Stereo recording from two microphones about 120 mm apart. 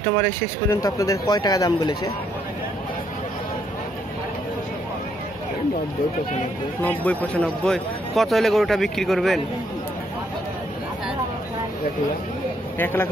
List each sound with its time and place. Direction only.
0.0 s speech: 15° left (ahead or behind)
6.8 s speech: 10° left (ahead or behind)
12.7 s speech: 15° left (ahead or behind)